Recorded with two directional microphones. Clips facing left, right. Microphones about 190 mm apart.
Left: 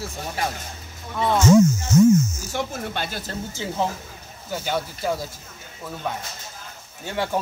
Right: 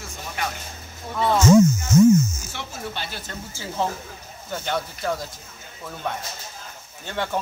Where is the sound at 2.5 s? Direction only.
50° left (ahead or behind).